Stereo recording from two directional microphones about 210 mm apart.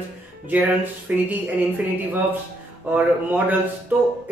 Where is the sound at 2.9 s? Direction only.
5° right (ahead or behind).